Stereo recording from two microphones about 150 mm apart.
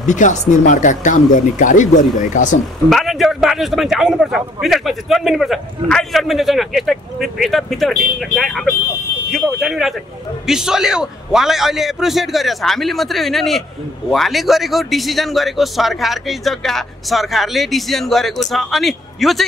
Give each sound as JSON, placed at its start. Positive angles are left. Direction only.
{"t": 0.0, "sound": "speech", "side_deg": 55}
{"t": 2.9, "sound": "a man's voice", "side_deg": 0}